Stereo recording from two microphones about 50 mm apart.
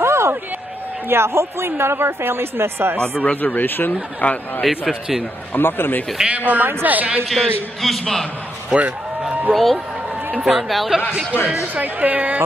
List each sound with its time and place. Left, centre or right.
0.0 s a sound: right
1.0 s speech: right
3.0 s speech: left
3.3 s speech: left
4.2 s speech: left
4.6 s a man's voice: centre
5.6 s speech: left
6.2 s a woman's voice: right
7.2 s a man's voice: centre
11.7 s a woman's voice: right